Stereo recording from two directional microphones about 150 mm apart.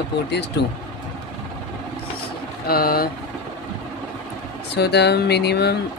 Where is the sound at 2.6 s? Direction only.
90° left.